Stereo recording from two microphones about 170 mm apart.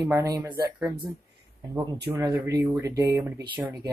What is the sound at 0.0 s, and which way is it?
Speech, 20° right (ahead or behind).